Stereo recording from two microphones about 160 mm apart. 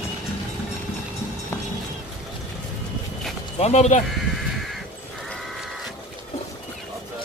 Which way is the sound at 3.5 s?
45° left (ahead or behind).